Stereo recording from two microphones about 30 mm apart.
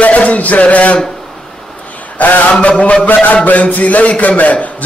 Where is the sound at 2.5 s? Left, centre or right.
Left.